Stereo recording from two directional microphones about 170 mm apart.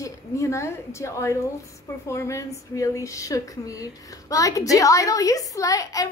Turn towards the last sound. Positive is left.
turn(degrees=20)  # may be behind; listen again after turning